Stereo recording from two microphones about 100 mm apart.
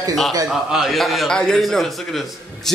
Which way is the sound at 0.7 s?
Centre (ahead or behind).